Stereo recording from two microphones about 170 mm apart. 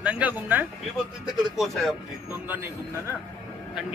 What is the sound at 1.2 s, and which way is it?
Speech, centre (ahead or behind).